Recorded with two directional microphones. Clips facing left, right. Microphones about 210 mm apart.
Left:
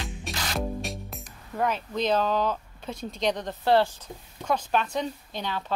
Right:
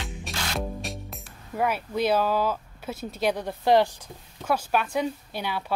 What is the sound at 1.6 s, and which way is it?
Speech, 10° right (ahead or behind).